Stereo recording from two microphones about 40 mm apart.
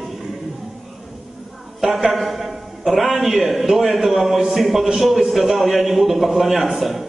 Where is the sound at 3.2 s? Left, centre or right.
Centre.